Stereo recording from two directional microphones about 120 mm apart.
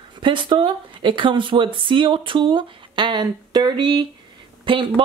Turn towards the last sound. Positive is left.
turn(degrees=-45)  # may be behind; listen again after turning